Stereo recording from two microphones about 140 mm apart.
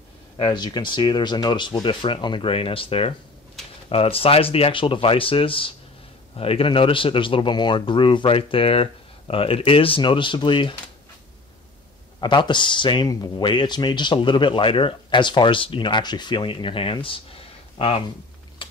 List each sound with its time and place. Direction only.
0.4 s speech: 30° left (ahead or behind)
12.2 s speech: 35° left (ahead or behind)